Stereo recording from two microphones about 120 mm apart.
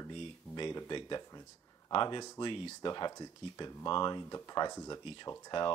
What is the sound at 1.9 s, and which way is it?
Speech, 45° left (ahead or behind).